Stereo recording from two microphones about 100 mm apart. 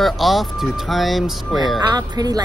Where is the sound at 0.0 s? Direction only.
Centre (ahead or behind).